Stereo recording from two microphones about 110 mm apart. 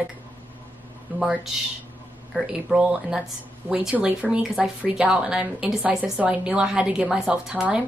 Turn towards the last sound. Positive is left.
turn(degrees=-10)  # may be behind; listen again after turning